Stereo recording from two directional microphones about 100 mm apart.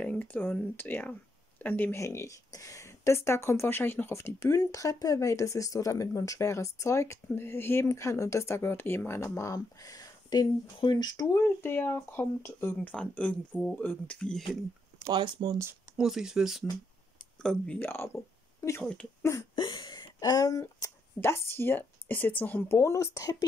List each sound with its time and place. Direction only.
0.0 s speech: 15° left (ahead or behind)
2.0 s speech: 30° left (ahead or behind)
11.4 s speech: 20° left (ahead or behind)
12.9 s speech: 10° left (ahead or behind)
15.0 s speech: 50° right (ahead or behind)
16.0 s speech: 5° right (ahead or behind)
17.4 s speech: 5° left (ahead or behind)
17.7 s speech: 20° left (ahead or behind)
18.8 s speech: 10° left (ahead or behind)
19.5 s a sound: 50° left (ahead or behind)
20.6 s speech: 25° left (ahead or behind)